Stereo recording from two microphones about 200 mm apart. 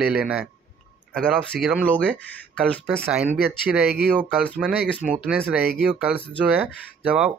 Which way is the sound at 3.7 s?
5° right (ahead or behind).